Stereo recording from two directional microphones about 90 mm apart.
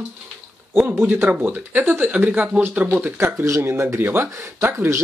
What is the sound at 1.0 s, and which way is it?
Speech, 20° right (ahead or behind).